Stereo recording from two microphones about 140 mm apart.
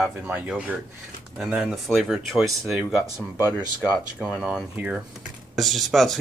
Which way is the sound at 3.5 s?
25° right (ahead or behind).